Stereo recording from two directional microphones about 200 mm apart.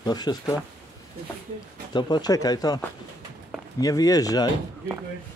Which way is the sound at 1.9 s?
20° left (ahead or behind).